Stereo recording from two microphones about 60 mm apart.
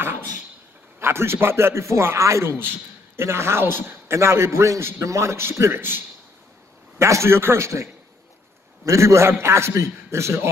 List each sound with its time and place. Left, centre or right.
0.9 s a man's voice: right
7.0 s a man's voice: right